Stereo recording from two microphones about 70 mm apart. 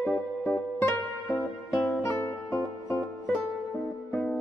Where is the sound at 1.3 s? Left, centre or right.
Centre.